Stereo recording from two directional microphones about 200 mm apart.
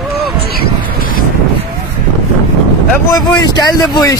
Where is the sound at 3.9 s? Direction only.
15° left (ahead or behind).